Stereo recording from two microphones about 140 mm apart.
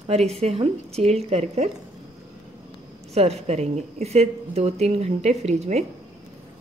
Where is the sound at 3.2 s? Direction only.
50° right (ahead or behind).